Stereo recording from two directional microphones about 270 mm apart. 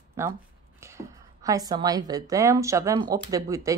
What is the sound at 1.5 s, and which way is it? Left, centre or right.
A woman's voice, centre.